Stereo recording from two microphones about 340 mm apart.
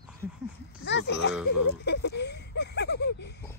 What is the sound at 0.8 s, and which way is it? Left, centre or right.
Speech, left.